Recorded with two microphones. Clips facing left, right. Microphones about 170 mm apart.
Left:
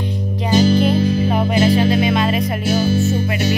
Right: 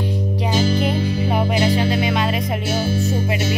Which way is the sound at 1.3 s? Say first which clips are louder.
Left 1 dB; 10° right (ahead or behind).